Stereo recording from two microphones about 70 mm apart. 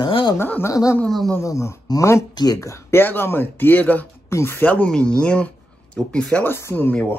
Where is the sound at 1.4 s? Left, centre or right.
Left.